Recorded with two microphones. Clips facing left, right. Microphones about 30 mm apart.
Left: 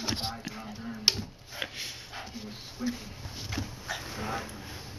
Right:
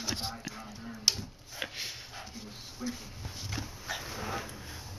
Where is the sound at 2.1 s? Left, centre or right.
Centre.